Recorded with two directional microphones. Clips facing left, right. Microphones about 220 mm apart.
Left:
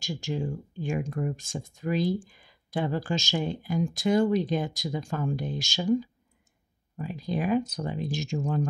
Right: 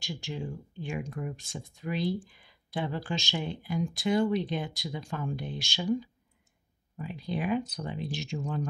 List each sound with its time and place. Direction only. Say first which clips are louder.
0.0 s speech: left 5 dB; 45° left (ahead or behind)